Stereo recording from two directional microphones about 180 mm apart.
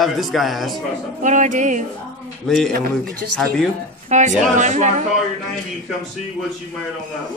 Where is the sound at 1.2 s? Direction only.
45° right (ahead or behind).